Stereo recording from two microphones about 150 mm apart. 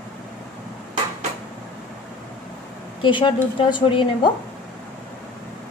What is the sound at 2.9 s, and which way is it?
Speech, 35° left (ahead or behind).